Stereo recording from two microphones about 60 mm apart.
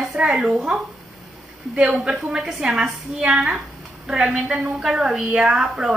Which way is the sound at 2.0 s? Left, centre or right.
Centre.